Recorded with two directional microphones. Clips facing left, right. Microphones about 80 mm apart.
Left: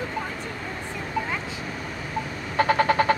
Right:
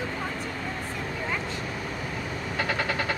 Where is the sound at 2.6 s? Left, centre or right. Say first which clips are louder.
Left 9 dB; left.